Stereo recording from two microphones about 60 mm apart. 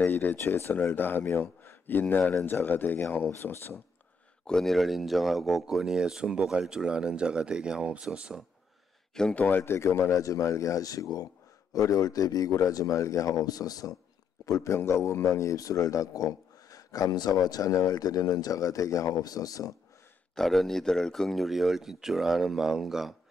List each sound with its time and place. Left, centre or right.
0.0 s a sound: left
0.5 s speech: left
0.9 s speech: left
4.5 s speech: centre
9.3 s speech: left
9.6 s speech: left
14.4 s speech: left
14.8 s a man's voice: left
20.3 s speech: centre